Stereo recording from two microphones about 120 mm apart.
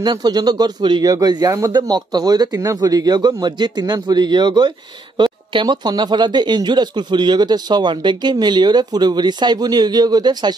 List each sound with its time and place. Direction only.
0.0 s speech: 35° right (ahead or behind)